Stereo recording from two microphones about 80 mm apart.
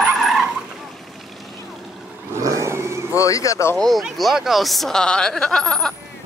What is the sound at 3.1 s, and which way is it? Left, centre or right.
Speech, left.